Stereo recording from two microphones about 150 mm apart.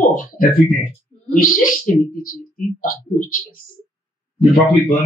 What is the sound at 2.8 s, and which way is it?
Speech, 65° left (ahead or behind).